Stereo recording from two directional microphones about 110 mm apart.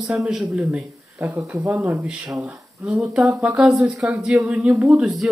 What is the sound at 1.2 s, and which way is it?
Speech, 30° right (ahead or behind).